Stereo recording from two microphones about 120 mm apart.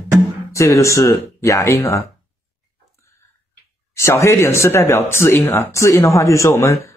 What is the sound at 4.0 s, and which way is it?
Speech, 25° left (ahead or behind).